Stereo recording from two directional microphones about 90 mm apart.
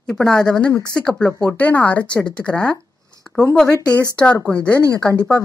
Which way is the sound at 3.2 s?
5° left (ahead or behind).